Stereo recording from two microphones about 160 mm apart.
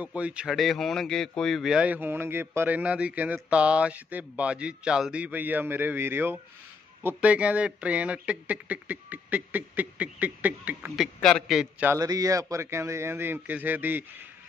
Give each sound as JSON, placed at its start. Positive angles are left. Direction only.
{"t": 0.0, "sound": "speech", "side_deg": -10}
{"t": 11.1, "sound": "a man's voice", "side_deg": 5}
{"t": 11.9, "sound": "speech", "side_deg": -20}